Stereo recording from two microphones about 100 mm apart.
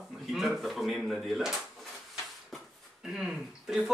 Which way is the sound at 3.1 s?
5° right (ahead or behind).